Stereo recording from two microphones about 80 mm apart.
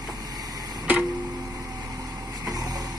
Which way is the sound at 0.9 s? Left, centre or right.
Centre.